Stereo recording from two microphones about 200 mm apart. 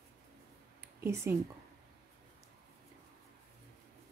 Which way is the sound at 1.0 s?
15° right (ahead or behind).